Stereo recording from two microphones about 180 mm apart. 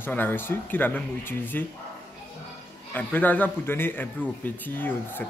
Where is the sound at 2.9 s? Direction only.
10° left (ahead or behind).